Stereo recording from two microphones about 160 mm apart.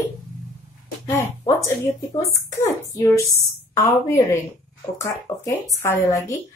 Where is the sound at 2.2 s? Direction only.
20° left (ahead or behind).